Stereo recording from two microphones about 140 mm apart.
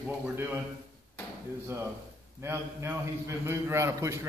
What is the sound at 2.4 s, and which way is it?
A man's voice, 15° right (ahead or behind).